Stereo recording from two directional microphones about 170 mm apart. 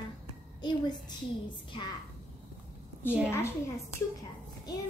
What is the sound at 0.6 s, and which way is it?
Speech, 25° left (ahead or behind).